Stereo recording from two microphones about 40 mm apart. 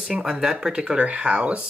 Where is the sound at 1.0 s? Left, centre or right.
Right.